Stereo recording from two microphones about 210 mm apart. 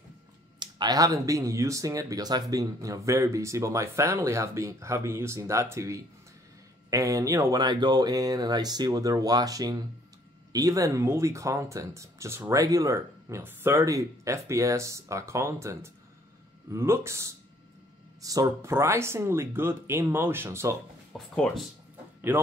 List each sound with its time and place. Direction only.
0.6 s speech: 20° right (ahead or behind)
21.1 s speech: centre (ahead or behind)